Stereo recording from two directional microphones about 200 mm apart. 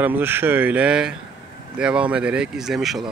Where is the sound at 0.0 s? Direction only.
10° right (ahead or behind).